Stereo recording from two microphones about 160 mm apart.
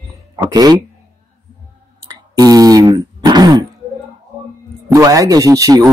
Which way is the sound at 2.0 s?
25° right (ahead or behind).